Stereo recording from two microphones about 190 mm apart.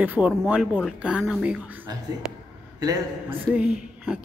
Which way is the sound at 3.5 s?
5° right (ahead or behind).